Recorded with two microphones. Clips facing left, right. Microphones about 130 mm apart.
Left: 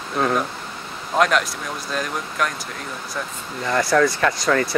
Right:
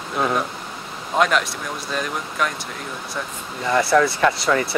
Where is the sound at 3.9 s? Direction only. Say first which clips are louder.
Even; 25° right (ahead or behind).